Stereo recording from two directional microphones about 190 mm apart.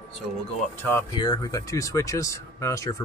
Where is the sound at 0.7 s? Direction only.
10° left (ahead or behind).